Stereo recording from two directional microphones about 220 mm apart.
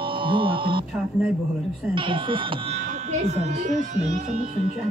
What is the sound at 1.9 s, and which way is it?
A child's voice, 20° right (ahead or behind).